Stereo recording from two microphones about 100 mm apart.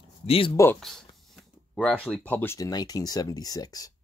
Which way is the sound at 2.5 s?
40° left (ahead or behind).